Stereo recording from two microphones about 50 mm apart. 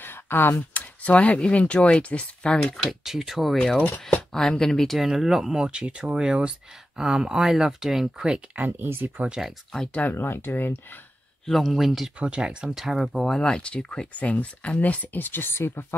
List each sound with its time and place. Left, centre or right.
0.0 s a sound: left
0.6 s speech: left
2.9 s speech: centre
4.3 s speech: centre
4.9 s speech: centre
5.7 s speech: right
8.5 s speech: right
10.1 s speech: left
11.6 s speech: centre
12.2 s speech: right
12.7 s speech: centre
13.2 s speech: centre; by 15.9 s left